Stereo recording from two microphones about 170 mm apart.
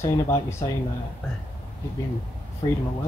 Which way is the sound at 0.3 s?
15° left (ahead or behind).